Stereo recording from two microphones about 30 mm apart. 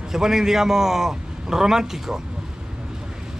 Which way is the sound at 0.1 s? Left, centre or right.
Centre.